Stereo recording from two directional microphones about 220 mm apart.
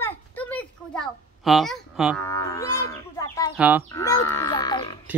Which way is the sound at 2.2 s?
15° left (ahead or behind).